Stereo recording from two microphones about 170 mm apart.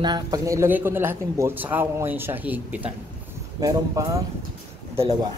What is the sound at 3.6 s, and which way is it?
Speech, 20° right (ahead or behind).